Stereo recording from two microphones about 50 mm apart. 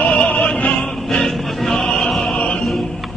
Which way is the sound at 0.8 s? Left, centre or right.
Centre.